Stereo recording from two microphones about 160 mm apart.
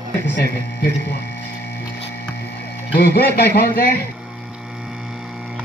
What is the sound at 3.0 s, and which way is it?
Speech, 90° left.